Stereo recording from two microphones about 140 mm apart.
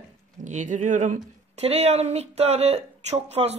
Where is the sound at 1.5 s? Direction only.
50° right (ahead or behind).